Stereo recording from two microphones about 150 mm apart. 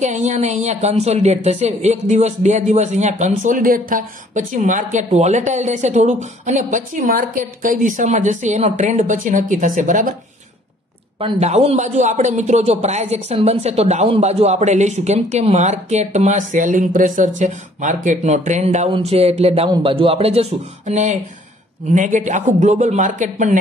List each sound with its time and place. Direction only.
0.0 s a woman's voice: 50° right (ahead or behind)
11.1 s a woman's voice: 40° right (ahead or behind)
18.9 s speech: 40° right (ahead or behind); by 23.6 s 55° right (ahead or behind)